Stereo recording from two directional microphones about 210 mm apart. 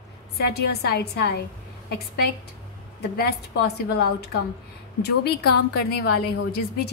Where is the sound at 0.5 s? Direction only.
50° left (ahead or behind).